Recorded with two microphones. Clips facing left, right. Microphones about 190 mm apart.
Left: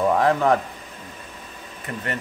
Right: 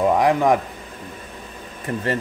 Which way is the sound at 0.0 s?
15° right (ahead or behind).